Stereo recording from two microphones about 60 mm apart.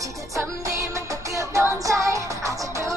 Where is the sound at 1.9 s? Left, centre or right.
Right.